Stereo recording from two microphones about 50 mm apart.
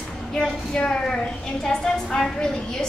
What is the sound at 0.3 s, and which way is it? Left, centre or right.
A woman's voice, centre.